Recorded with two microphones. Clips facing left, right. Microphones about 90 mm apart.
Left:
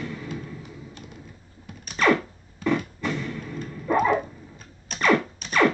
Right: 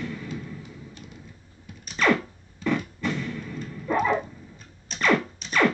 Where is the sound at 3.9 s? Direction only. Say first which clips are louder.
Left 2 dB; 10° left (ahead or behind).